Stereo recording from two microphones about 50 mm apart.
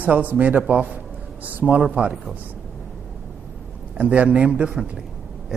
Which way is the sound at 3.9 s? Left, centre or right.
Right.